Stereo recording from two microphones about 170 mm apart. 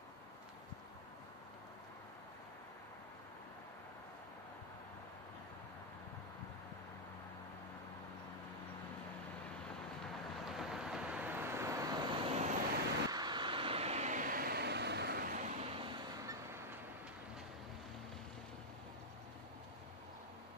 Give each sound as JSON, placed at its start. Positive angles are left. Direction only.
{"t": 10.0, "sound": "vehicle", "side_deg": 0}
{"t": 12.3, "sound": "vehicle", "side_deg": -40}
{"t": 13.1, "sound": "vehicle", "side_deg": -25}